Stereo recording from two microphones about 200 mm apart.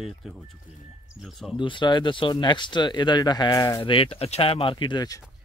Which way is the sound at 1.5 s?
25° left (ahead or behind).